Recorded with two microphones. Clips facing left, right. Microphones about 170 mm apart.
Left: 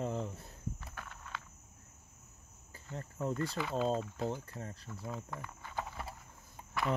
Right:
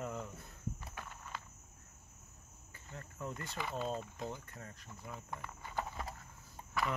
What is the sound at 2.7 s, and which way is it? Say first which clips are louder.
Cricket: left 6 dB; 35° left (ahead or behind).